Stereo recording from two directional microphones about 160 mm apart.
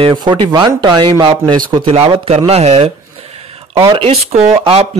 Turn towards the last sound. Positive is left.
turn(degrees=-35)  # may be behind; listen again after turning